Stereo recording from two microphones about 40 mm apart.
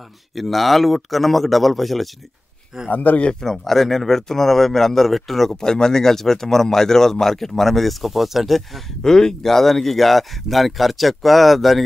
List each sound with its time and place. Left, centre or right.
0.3 s speech: centre
2.9 s speech: left
3.3 s speech: centre
9.0 s speech: centre